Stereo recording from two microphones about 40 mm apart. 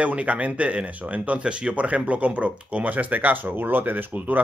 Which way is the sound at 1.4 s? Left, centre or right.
Right.